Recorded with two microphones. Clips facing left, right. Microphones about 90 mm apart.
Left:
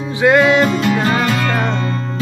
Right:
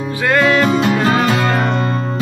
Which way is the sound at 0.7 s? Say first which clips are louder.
Right 2 dB; 5° right (ahead or behind).